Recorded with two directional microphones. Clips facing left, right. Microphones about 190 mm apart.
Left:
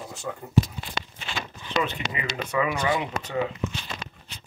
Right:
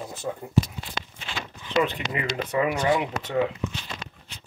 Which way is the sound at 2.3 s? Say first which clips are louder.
Right 1 dB; 50° right (ahead or behind).